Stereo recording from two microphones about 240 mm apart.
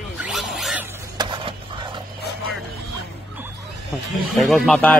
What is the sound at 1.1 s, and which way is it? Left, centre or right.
Printer, centre.